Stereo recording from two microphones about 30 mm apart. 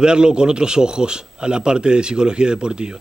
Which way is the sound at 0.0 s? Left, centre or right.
Right.